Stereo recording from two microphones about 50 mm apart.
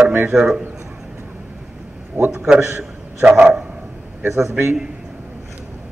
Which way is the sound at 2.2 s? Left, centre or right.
Right.